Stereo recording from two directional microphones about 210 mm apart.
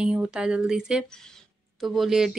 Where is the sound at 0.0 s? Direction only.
5° right (ahead or behind).